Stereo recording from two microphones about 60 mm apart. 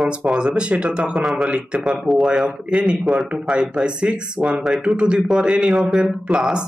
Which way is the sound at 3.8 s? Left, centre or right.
Centre.